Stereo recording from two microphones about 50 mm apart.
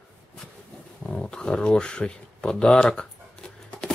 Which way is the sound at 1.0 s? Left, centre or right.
Centre.